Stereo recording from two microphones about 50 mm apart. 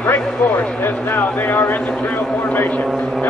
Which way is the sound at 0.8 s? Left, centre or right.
Left.